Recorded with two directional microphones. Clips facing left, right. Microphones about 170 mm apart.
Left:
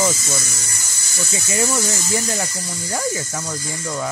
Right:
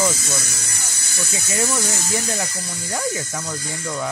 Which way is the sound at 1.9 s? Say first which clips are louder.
Left 2 dB; 15° left (ahead or behind).